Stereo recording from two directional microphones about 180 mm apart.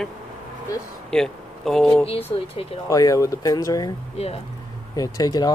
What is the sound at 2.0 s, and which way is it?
Speech, 35° left (ahead or behind).